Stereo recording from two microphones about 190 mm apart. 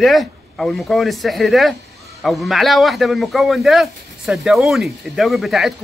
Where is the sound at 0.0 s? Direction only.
Centre (ahead or behind).